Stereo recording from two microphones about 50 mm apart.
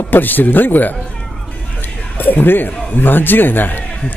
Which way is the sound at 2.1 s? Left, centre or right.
Left.